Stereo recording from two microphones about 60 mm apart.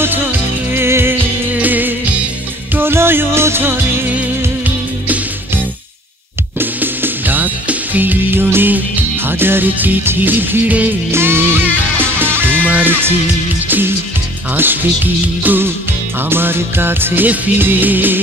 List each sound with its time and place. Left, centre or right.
0.7 s music: right
1.5 s music: right
6.6 s music: right
11.1 s music: right